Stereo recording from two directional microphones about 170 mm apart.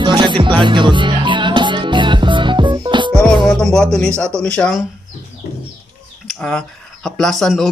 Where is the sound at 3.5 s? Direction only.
5° left (ahead or behind).